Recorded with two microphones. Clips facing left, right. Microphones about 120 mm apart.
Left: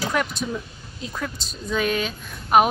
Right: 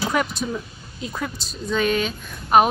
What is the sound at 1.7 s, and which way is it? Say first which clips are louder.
Speech: right 2 dB; centre (ahead or behind).